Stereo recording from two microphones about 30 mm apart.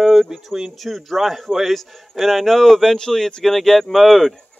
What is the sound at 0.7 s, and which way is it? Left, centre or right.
Speech, centre.